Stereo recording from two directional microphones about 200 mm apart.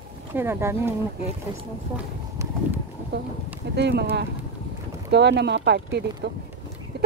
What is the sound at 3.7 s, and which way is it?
Speech, 55° right (ahead or behind).